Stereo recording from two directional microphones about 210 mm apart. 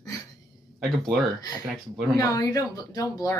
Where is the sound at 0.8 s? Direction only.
Centre (ahead or behind).